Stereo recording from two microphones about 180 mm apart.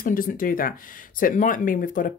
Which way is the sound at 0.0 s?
50° left (ahead or behind).